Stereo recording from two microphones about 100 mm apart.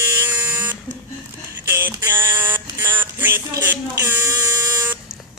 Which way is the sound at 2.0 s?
25° right (ahead or behind).